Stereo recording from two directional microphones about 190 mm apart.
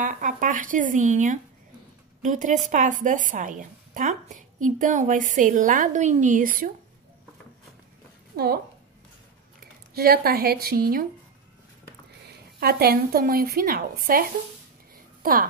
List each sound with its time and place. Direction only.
0.0 s a woman's voice: 45° right (ahead or behind)
8.3 s a woman's voice: 55° right (ahead or behind)
9.9 s a woman's voice: 55° right (ahead or behind)
12.3 s a woman's voice: 55° right (ahead or behind)